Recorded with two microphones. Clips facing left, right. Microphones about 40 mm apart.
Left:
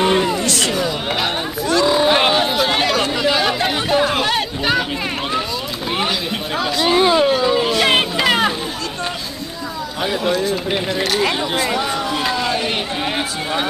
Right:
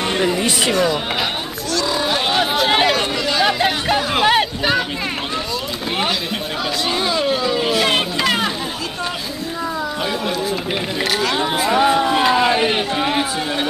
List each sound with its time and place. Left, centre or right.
0.4 s a sound: centre
1.7 s a sound: centre
2.3 s chatter: centre
3.2 s chatter: centre
3.4 s music: centre
4.1 s chatter: centre
6.6 s chatter: centre
7.2 s a sound: centre
7.8 s music: centre
10.2 s speech: centre
11.8 s speech: right
12.6 s speech: centre